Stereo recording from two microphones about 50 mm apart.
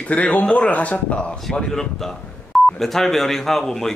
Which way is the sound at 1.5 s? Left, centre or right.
Centre.